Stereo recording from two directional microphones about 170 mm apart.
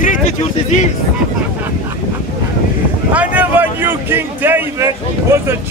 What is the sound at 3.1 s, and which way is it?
Speech, 10° right (ahead or behind).